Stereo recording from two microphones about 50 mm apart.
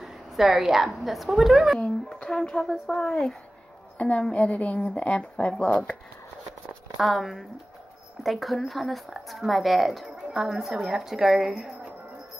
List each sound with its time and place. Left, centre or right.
0.0 s a woman's voice: centre
2.0 s speech: centre
7.0 s a woman's voice: centre